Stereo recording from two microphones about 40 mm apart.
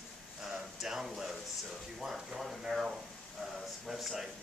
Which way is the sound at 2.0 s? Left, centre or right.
Centre.